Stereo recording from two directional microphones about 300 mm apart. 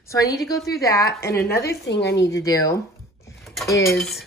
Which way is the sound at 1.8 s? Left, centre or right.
Left.